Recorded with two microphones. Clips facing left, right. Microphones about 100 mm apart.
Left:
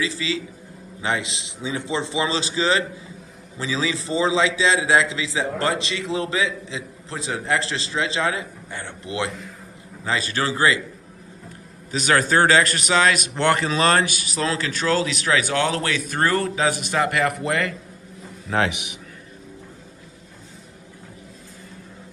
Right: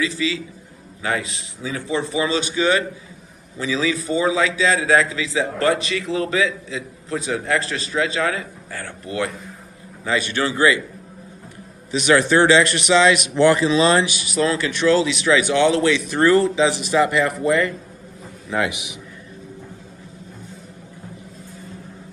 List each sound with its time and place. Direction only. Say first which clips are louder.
0.0 s a man's voice: right 3 dB; 30° left (ahead or behind)
10.0 s a man's voice: right 2 dB; 35° left (ahead or behind)
11.9 s a man's voice: right 3 dB; 40° left (ahead or behind)
13.4 s a man's voice: right 5 dB; 60° left (ahead or behind)